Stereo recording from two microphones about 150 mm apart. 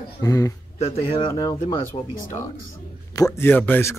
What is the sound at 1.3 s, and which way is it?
Speech, 25° left (ahead or behind).